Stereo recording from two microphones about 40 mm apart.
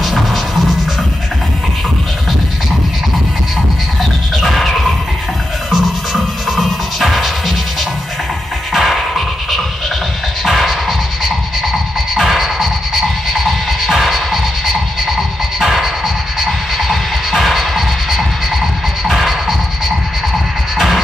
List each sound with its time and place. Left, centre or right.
4.4 s music: centre
8.7 s music: centre
12.2 s music: centre
20.7 s music: centre